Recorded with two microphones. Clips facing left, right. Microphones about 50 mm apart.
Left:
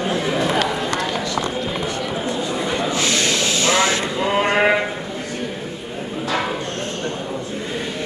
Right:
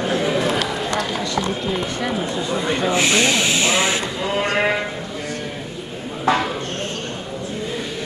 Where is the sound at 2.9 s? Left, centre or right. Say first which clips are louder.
Right 3 dB; right.